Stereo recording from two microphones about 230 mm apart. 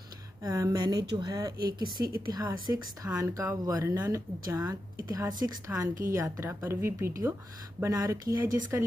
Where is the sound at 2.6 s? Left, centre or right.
Centre.